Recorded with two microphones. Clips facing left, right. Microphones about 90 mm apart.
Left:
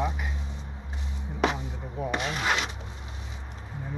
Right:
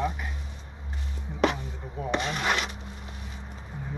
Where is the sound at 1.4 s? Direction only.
10° left (ahead or behind).